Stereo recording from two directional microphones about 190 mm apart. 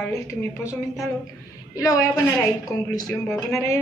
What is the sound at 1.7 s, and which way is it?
Speech, 15° left (ahead or behind).